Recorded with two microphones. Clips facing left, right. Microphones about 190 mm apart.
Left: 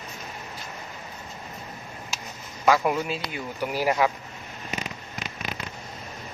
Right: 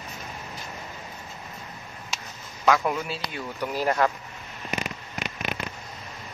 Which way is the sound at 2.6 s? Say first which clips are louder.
Left 1 dB; 10° left (ahead or behind).